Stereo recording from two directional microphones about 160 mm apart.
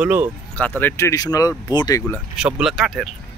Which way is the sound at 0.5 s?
10° left (ahead or behind).